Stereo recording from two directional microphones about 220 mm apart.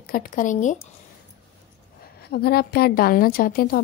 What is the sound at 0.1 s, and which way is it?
Speech, 35° left (ahead or behind).